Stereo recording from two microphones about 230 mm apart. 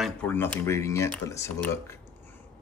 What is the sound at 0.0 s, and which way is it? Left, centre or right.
Speech, centre.